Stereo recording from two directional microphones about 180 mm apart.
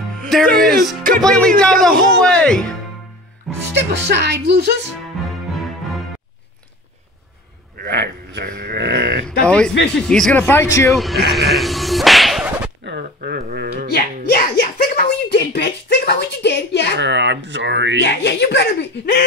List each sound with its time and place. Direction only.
0.6 s speech: centre (ahead or behind)
3.7 s a woman's voice: 70° right (ahead or behind)
5.2 s music: centre (ahead or behind)
7.7 s sheep: 65° right (ahead or behind)
9.4 s speech: 5° left (ahead or behind)
10.9 s speech: centre (ahead or behind)
11.3 s whip: centre (ahead or behind)
12.8 s a sound: 60° right (ahead or behind)
13.9 s a sound: 60° left (ahead or behind)
17.0 s speech: 75° right (ahead or behind)
18.0 s speech: 70° left (ahead or behind)